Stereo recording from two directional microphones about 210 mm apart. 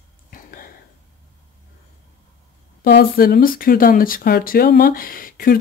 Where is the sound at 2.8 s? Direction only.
45° left (ahead or behind).